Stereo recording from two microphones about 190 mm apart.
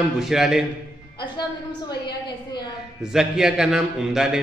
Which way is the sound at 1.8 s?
25° left (ahead or behind).